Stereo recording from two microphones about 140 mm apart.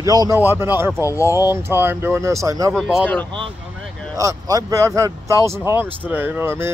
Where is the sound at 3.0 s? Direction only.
10° left (ahead or behind).